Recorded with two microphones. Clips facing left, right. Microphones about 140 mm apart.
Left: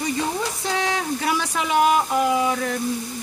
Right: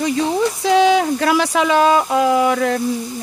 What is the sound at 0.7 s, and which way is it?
Speech, 90° right.